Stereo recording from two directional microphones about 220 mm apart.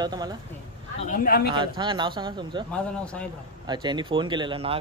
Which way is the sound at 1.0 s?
40° left (ahead or behind).